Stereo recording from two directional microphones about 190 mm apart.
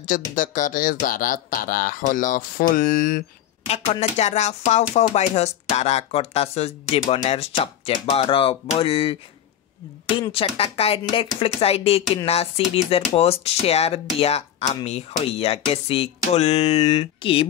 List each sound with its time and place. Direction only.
0.0 s speech: 45° left (ahead or behind)
3.6 s speech: 35° left (ahead or behind)
10.3 s speech: 30° left (ahead or behind)